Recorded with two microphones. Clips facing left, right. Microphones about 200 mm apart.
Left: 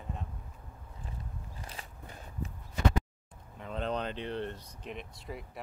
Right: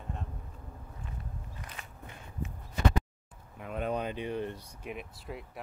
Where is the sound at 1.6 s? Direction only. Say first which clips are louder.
Even; 35° left (ahead or behind).